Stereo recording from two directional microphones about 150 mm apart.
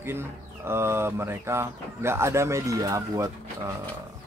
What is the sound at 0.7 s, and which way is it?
Speech, 15° right (ahead or behind).